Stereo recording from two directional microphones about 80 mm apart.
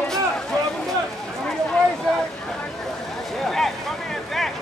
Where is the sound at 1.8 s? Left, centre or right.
Centre.